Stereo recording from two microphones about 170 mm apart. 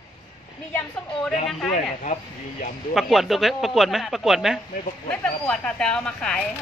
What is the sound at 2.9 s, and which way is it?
Speech, centre (ahead or behind).